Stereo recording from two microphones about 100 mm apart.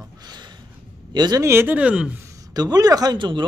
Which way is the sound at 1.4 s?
25° right (ahead or behind).